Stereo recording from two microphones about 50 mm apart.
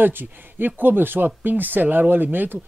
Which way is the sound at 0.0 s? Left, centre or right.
Right.